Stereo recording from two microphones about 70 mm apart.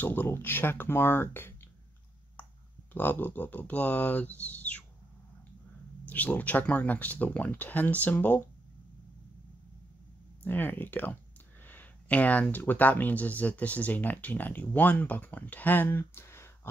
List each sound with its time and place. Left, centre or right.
0.0 s speech: left
2.9 s speech: left
6.0 s speech: left
10.4 s speech: left
16.0 s a sound: left